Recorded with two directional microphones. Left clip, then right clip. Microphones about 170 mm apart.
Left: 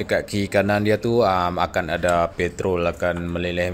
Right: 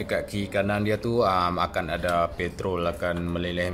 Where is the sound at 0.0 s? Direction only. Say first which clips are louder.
Left 6 dB; 20° left (ahead or behind).